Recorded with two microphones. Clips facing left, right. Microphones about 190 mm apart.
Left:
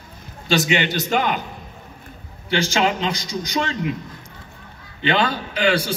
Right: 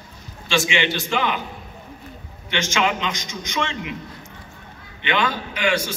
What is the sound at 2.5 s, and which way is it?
A man's voice, 35° left (ahead or behind).